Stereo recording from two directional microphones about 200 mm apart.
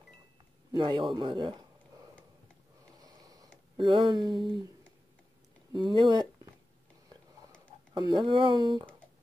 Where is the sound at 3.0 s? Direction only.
20° right (ahead or behind).